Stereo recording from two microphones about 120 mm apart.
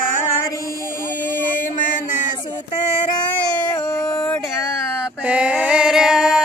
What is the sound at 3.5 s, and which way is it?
Baby cry, 35° left (ahead or behind).